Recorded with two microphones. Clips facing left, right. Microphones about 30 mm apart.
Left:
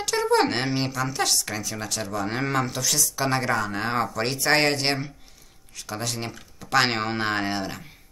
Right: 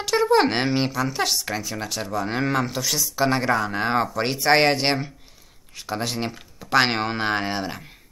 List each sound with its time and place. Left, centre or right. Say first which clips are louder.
0.0 s speech: right 3 dB; centre